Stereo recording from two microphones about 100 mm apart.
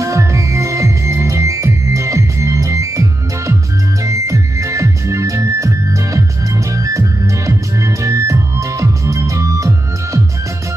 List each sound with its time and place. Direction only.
0.0 s music: 30° right (ahead or behind)